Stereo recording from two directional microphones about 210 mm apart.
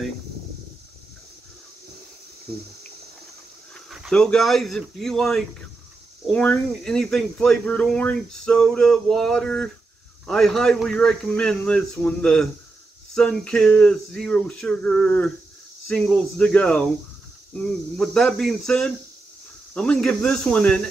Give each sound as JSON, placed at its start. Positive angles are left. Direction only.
{"t": 3.9, "sound": "speech", "side_deg": 0}